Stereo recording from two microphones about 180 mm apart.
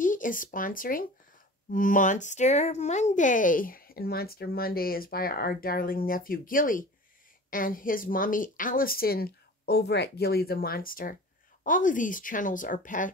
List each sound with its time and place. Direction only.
0.0 s speech: 45° left (ahead or behind)